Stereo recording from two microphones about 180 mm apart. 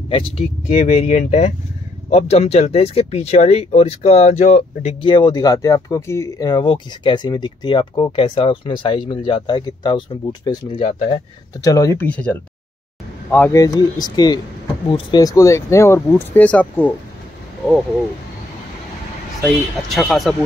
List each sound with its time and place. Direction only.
0.1 s speech: 35° left (ahead or behind)
11.6 s speech: 20° left (ahead or behind)
19.4 s speech: 5° left (ahead or behind)